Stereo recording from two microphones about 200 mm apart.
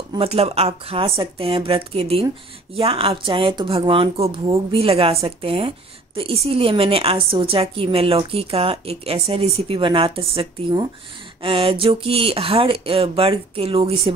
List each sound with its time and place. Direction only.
0.1 s a woman's voice: 30° right (ahead or behind)